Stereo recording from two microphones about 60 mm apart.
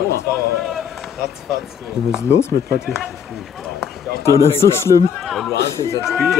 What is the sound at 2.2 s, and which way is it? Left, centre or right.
Speech, left.